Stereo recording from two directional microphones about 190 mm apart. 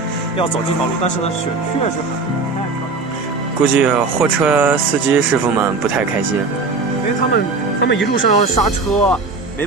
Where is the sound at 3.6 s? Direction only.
5° right (ahead or behind).